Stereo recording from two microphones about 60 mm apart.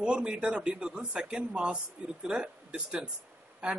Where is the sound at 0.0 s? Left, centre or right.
Centre.